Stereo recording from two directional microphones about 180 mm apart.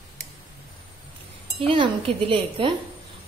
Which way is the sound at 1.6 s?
30° right (ahead or behind).